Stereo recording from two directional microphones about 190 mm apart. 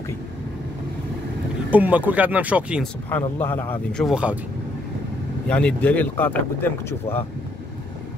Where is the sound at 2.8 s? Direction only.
10° left (ahead or behind).